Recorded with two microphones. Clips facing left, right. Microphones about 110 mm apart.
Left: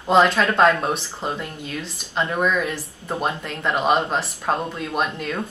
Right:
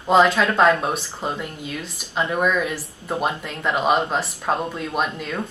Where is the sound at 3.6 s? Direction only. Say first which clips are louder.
Even; centre (ahead or behind).